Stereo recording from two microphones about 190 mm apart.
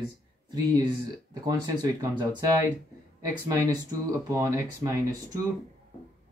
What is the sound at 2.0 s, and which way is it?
Speech, 20° right (ahead or behind).